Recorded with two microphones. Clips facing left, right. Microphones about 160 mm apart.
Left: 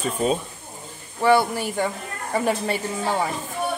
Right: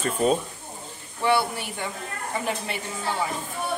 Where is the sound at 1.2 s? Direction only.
45° left (ahead or behind).